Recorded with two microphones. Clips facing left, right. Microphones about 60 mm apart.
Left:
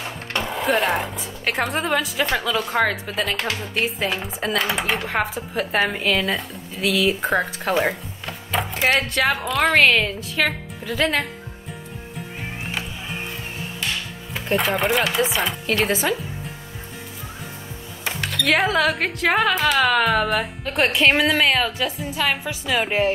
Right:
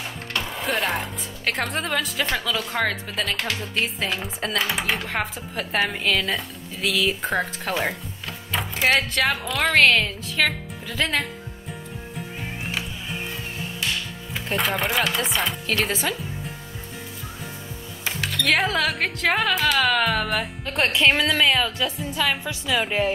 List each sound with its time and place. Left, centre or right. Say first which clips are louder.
0.5 s speech: left 5 dB; centre
14.3 s chopping: left 3 dB; centre
18.0 s speech: left 1 dB; centre
22.0 s speech: left 1 dB; left